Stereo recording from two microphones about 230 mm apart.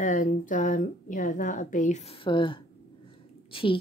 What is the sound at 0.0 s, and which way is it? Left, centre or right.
A woman's voice, left.